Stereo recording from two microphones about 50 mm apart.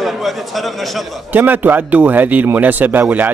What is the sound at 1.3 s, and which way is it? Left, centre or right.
A man's voice, right.